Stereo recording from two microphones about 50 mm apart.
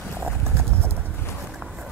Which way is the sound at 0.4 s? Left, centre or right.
Right.